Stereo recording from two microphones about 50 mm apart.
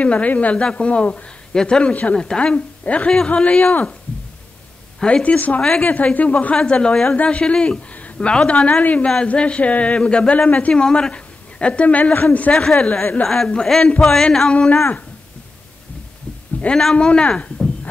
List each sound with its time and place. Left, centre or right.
0.0 s speech: left
2.5 s speech: left
5.0 s a woman's voice: left
12.5 s speech: centre
16.6 s speech: centre